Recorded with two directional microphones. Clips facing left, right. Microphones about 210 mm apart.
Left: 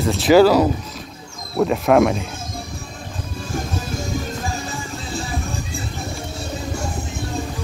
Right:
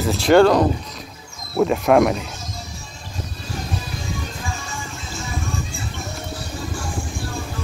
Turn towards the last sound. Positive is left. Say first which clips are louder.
# left 2 dB
turn(degrees=25)  # may be behind; listen again after turning